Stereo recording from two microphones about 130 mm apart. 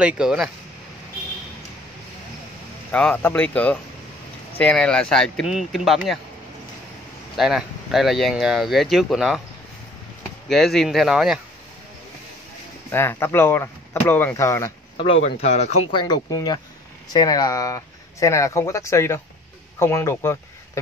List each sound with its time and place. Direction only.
0.0 s speech: 5° right (ahead or behind)
2.9 s speech: 10° left (ahead or behind)
7.3 s speech: centre (ahead or behind)
10.5 s speech: centre (ahead or behind)
12.9 s speech: 20° left (ahead or behind)
15.0 s speech: 55° left (ahead or behind)
15.9 s speech: 35° left (ahead or behind)